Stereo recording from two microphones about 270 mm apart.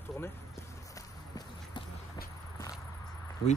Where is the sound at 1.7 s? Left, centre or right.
Centre.